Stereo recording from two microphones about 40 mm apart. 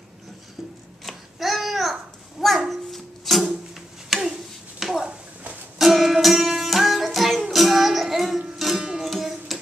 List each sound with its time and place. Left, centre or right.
1.0 s babbling: centre
2.4 s music: centre
4.7 s a sound: centre
5.8 s music: centre
8.7 s music: centre
9.0 s music: centre